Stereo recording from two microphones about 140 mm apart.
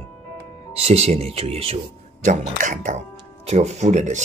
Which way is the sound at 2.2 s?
65° right (ahead or behind).